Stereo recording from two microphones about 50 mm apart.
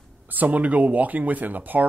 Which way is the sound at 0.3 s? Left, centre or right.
Right.